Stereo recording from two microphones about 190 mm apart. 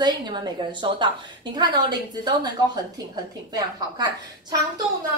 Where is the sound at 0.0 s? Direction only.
25° right (ahead or behind).